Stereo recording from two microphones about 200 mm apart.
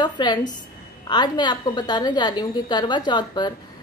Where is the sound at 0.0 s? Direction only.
20° left (ahead or behind).